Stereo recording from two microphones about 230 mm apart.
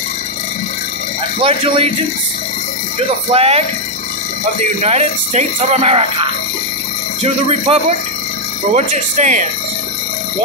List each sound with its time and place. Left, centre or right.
1.4 s speech: right
3.3 s speech: right
4.8 s speech: right